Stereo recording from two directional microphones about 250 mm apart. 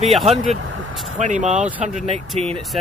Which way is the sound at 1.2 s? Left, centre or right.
Right.